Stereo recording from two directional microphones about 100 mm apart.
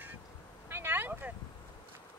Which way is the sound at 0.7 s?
20° right (ahead or behind).